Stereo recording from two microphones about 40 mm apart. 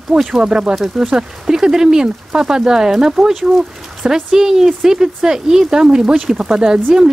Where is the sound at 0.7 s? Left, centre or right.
Centre.